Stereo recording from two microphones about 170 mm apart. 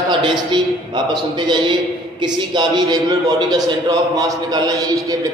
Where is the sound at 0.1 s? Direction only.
30° right (ahead or behind).